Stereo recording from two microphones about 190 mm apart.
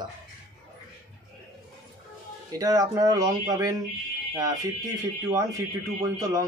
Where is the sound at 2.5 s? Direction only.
20° right (ahead or behind).